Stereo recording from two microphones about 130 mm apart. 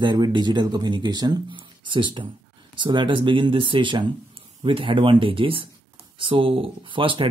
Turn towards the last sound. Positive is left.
turn(degrees=-40)  # may be behind; listen again after turning